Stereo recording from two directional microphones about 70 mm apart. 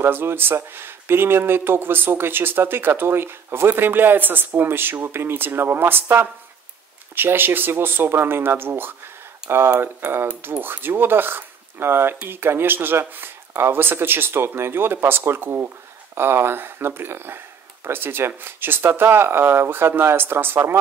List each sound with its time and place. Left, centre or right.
0.0 s speech: right